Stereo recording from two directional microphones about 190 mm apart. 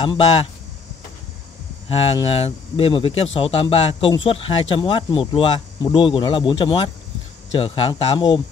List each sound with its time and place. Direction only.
1.9 s speech: 30° left (ahead or behind)